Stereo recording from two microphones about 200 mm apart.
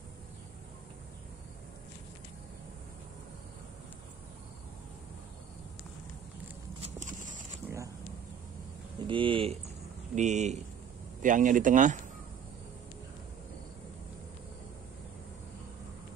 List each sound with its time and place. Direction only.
6.8 s clip-clop: 40° right (ahead or behind)
9.0 s a sound: 25° right (ahead or behind)
10.1 s speech: 35° right (ahead or behind)